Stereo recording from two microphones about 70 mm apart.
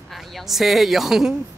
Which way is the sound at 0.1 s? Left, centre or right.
Centre.